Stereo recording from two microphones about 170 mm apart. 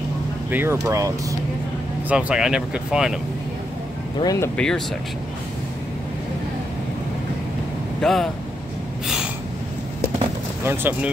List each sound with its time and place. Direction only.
0.5 s speech: 15° right (ahead or behind)
2.0 s speech: 5° right (ahead or behind)
4.2 s speech: 20° left (ahead or behind)
4.6 s speech: 5° left (ahead or behind)
8.0 s speech: centre (ahead or behind)
10.6 s speech: 10° right (ahead or behind)